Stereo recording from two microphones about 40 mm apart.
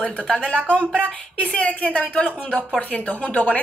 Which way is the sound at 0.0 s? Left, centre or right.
Left.